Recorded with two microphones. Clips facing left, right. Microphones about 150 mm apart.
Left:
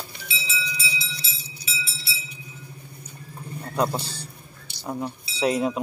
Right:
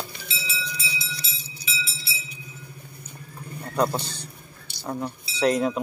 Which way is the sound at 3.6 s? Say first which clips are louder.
Right 1 dB; centre (ahead or behind).